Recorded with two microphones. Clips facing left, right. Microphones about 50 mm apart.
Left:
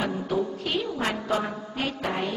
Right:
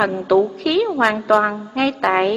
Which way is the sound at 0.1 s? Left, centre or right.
Right.